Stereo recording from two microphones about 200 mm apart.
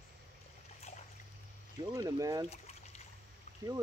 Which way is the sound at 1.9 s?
15° right (ahead or behind).